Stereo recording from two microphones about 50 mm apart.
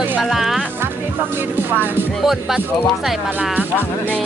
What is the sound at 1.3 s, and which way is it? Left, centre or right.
Speech, right.